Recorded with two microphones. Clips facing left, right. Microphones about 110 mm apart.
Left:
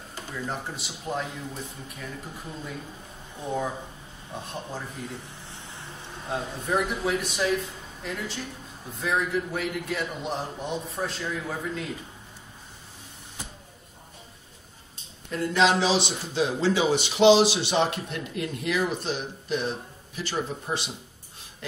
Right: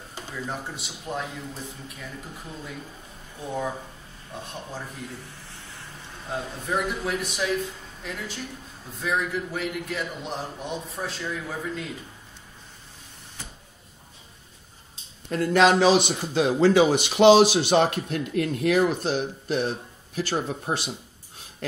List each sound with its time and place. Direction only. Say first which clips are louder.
0.5 s a man's voice: even; centre (ahead or behind)
4.5 s a man's voice: left 1 dB; 5° left (ahead or behind)
5.4 s a sound: left 1 dB; 20° left (ahead or behind)
6.2 s a man's voice: left 1 dB; centre (ahead or behind)
15.2 s speech: right 3 dB; 55° right (ahead or behind)